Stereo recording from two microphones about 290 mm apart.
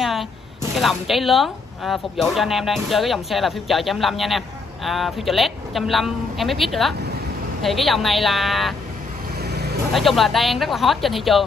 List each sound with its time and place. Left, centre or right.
0.0 s speech: centre
9.4 s vehicle: right
9.9 s speech: centre